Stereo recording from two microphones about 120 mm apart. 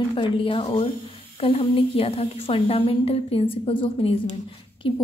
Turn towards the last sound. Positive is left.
turn(degrees=45)  # may be behind; listen again after turning